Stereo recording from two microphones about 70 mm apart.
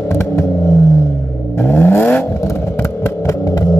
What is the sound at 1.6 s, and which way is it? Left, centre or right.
Vehicle, left.